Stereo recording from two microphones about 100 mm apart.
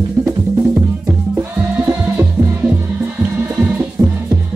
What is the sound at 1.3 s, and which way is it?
Music, 20° right (ahead or behind).